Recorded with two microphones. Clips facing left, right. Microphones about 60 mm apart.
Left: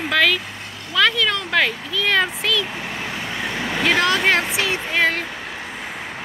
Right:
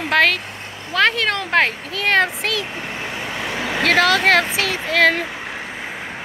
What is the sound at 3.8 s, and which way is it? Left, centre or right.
Speech, right.